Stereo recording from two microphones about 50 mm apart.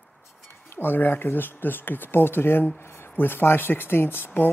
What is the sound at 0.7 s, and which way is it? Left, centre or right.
Speech, left.